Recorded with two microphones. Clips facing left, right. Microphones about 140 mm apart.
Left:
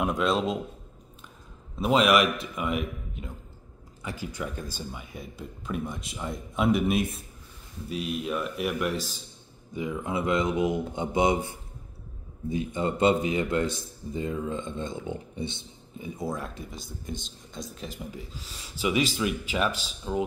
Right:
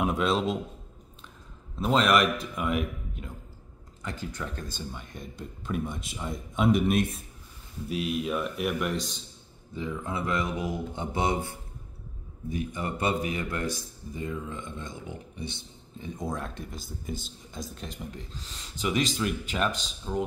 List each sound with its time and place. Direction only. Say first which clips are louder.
0.0 s speech: even; centre (ahead or behind)
1.8 s speech: left 2 dB; 5° left (ahead or behind)
9.8 s a man's voice: left 3 dB; 15° left (ahead or behind)
16.0 s speech: left 1 dB; 5° left (ahead or behind)